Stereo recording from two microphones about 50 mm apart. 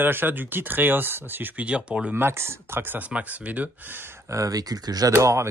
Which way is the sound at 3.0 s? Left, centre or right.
Right.